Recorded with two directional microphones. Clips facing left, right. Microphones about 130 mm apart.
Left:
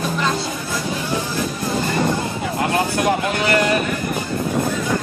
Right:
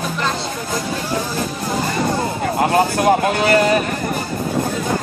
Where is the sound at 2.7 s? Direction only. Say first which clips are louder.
Right 4 dB; 35° right (ahead or behind).